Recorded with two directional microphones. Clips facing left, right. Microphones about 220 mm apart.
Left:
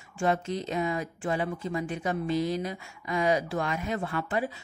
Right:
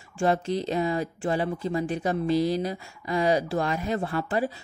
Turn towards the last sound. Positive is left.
turn(degrees=-35)  # may be behind; listen again after turning